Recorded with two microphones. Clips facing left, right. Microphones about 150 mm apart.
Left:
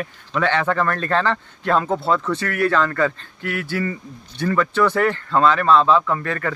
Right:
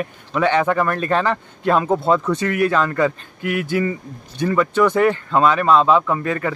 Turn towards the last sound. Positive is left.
turn(degrees=-15)  # may be behind; listen again after turning